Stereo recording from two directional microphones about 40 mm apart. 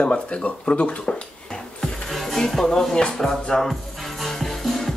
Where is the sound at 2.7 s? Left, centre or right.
Centre.